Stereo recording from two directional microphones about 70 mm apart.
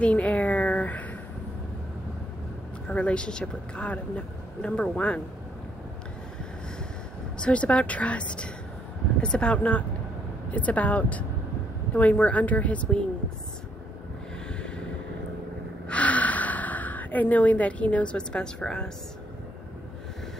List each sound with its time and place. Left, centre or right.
0.0 s a sound: centre
2.9 s a woman's voice: centre
7.3 s a woman's voice: centre
15.9 s gasp: left